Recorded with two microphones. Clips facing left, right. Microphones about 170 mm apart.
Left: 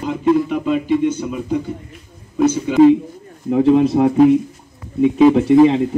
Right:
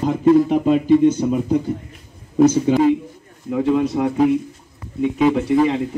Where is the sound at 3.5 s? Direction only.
30° left (ahead or behind).